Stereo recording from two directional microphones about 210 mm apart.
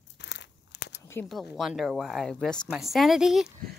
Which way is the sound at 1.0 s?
10° left (ahead or behind).